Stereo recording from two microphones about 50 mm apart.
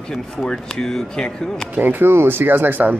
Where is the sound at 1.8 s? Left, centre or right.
Right.